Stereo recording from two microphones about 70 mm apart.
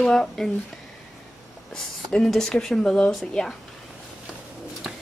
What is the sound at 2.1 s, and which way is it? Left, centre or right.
Speech, centre.